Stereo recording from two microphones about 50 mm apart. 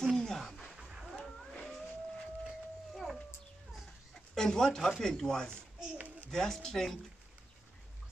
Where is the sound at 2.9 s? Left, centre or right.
Centre.